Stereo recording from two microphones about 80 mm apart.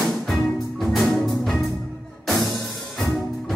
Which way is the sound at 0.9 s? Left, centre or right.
Centre.